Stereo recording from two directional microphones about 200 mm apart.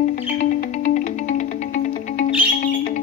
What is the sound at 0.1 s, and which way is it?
Music, 40° left (ahead or behind).